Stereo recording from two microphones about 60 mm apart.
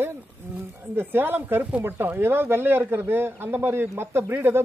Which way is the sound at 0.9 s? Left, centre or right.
Right.